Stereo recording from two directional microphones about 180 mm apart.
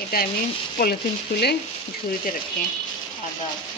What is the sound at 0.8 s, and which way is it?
Speech, 65° left (ahead or behind).